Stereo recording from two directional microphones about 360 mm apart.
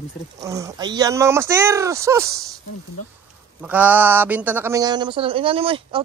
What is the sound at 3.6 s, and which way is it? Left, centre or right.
Speech, centre.